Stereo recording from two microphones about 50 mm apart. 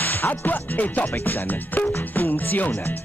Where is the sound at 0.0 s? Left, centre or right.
Left.